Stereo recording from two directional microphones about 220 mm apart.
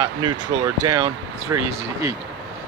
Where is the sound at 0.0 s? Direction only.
20° right (ahead or behind).